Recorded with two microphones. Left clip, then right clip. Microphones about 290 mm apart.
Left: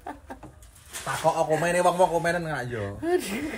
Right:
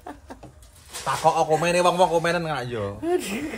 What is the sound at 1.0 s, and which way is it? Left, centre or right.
A man's voice, centre.